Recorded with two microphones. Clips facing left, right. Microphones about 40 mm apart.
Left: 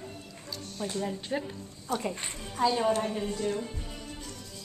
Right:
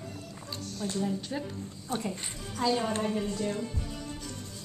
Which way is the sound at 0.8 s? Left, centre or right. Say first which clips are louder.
Right 1 dB; left.